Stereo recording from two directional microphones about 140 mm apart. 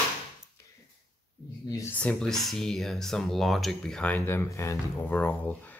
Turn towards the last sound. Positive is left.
turn(degrees=10)  # may be behind; listen again after turning